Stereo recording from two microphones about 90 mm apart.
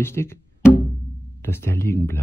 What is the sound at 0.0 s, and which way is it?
Music, 30° left (ahead or behind).